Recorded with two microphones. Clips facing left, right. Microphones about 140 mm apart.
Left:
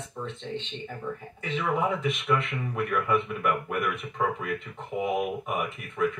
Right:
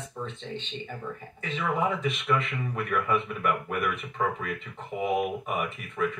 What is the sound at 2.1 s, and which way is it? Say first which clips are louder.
Speech: left 1 dB; 5° left (ahead or behind).